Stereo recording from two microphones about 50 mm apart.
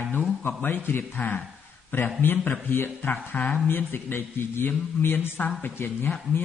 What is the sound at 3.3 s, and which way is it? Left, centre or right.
Speech, left.